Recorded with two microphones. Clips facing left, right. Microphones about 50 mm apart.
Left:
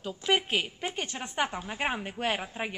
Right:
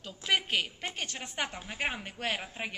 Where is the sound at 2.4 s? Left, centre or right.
Centre.